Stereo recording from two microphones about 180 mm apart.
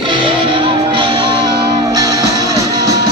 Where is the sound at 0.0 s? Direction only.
25° right (ahead or behind).